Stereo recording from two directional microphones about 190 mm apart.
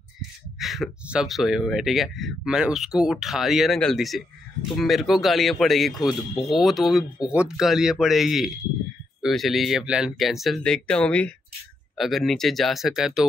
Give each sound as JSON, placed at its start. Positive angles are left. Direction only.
{"t": 0.6, "sound": "speech", "side_deg": 0}
{"t": 5.9, "sound": "speech", "side_deg": 25}
{"t": 6.5, "sound": "speech", "side_deg": 0}